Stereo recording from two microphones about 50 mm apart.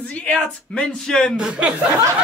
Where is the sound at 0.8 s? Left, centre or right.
Centre.